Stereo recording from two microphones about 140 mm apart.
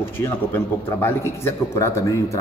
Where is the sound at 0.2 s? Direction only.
15° left (ahead or behind).